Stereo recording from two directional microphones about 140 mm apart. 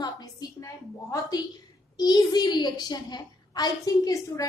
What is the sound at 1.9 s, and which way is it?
A woman's voice, 30° left (ahead or behind).